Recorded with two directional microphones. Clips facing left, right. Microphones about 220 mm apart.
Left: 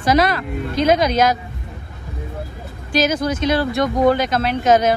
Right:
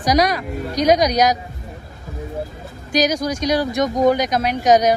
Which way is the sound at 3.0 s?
15° right (ahead or behind).